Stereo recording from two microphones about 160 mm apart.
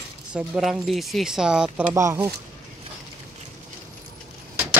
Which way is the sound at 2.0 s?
20° right (ahead or behind).